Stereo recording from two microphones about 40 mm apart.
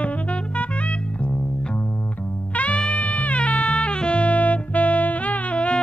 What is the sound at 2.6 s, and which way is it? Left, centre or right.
Music, left.